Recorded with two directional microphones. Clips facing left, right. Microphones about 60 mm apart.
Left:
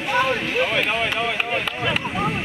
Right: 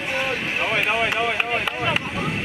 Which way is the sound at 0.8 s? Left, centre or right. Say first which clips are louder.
Right 1 dB; centre.